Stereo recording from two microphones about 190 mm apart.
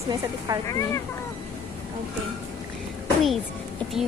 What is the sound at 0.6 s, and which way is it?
Speech, 15° left (ahead or behind).